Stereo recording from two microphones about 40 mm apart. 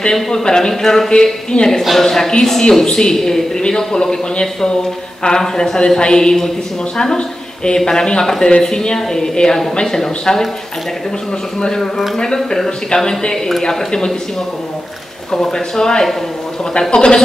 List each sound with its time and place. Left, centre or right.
0.0 s speech: centre
1.1 s speech: left
1.8 s speech: centre
5.2 s speech: left
5.6 s speech: centre
11.6 s speech: centre
15.5 s speech: centre